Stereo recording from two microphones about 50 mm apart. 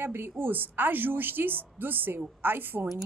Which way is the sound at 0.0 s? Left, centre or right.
Right.